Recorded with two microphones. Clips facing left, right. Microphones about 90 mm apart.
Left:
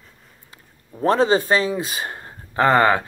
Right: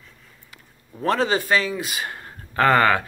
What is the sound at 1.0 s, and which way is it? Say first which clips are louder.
Speech: left 4 dB; 30° left (ahead or behind).